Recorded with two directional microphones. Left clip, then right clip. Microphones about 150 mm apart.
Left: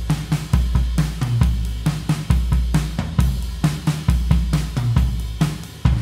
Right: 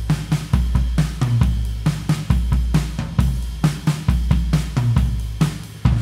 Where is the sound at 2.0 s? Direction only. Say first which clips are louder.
Even; centre (ahead or behind).